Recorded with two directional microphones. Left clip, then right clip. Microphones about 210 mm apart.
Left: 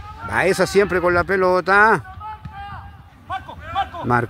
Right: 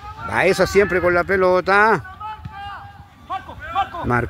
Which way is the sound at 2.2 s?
55° right (ahead or behind).